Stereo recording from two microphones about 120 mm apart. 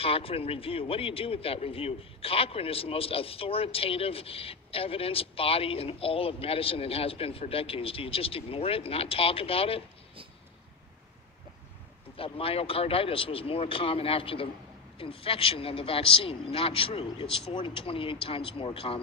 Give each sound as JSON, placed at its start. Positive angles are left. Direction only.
{"t": 0.0, "sound": "a man's voice", "side_deg": 50}
{"t": 12.2, "sound": "a man's voice", "side_deg": 50}